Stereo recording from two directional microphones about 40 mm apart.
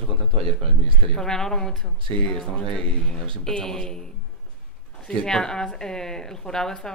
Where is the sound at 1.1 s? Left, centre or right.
Centre.